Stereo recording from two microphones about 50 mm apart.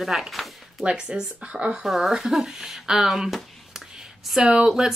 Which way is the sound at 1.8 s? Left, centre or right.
Centre.